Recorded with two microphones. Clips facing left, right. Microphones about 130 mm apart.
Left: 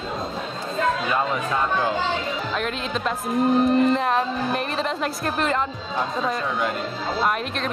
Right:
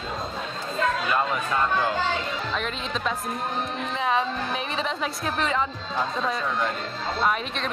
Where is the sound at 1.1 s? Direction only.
Centre (ahead or behind).